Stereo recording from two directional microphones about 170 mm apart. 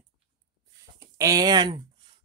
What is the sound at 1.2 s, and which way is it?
Speech, 20° right (ahead or behind).